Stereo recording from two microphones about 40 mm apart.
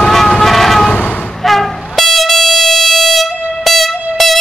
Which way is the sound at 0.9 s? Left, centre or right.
Left.